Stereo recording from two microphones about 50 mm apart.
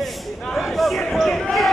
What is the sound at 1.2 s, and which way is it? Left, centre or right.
Basketball bounce, centre.